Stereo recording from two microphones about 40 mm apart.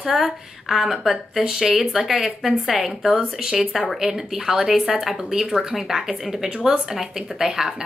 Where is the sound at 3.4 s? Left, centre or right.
Centre.